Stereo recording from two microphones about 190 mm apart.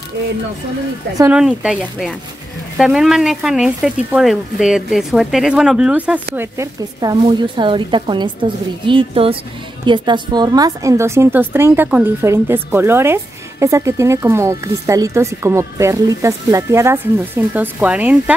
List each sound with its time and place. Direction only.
1.3 s a woman's voice: 5° right (ahead or behind)